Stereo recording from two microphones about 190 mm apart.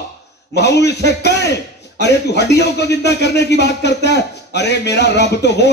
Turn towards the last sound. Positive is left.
turn(degrees=60)  # may be behind; listen again after turning